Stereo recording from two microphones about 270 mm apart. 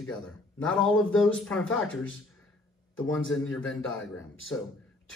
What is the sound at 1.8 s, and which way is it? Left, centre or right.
Speech, left.